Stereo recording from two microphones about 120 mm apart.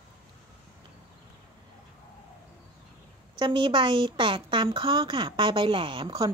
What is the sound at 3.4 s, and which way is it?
A woman's voice, 40° right (ahead or behind).